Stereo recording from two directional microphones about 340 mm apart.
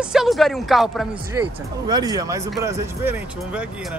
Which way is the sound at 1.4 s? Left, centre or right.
Centre.